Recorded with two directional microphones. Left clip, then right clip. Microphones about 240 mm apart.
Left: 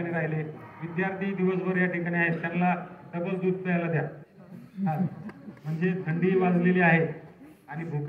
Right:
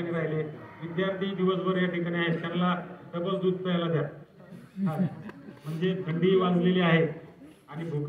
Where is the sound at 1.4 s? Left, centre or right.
Centre.